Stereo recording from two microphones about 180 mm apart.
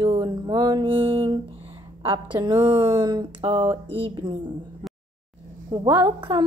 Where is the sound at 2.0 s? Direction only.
25° right (ahead or behind).